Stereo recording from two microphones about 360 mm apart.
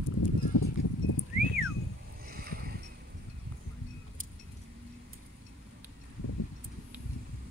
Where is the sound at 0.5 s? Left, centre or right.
Left.